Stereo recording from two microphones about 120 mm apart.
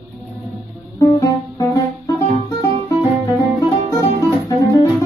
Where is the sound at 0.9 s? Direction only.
25° left (ahead or behind).